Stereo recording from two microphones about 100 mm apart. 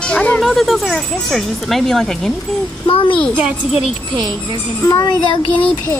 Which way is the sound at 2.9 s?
60° left (ahead or behind).